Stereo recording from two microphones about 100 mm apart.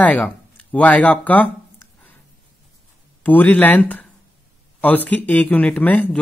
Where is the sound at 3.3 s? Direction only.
15° left (ahead or behind).